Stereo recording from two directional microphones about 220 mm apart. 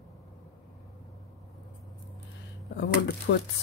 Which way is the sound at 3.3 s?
55° left (ahead or behind).